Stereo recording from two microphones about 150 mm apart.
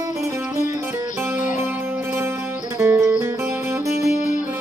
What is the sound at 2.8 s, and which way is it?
Music, 20° right (ahead or behind).